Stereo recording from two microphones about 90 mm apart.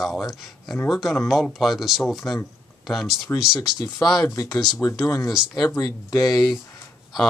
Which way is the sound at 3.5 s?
45° left (ahead or behind).